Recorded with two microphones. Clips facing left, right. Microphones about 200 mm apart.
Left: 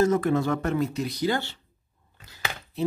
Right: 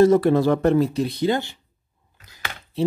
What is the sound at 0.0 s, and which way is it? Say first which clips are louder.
Speech: right 7 dB; 35° right (ahead or behind).